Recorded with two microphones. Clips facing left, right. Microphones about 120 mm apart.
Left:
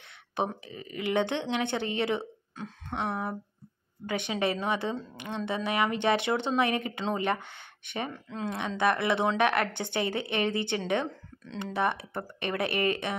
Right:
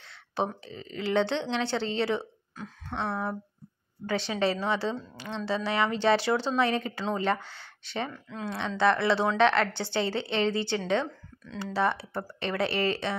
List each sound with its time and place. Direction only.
0.4 s a woman's voice: 15° left (ahead or behind)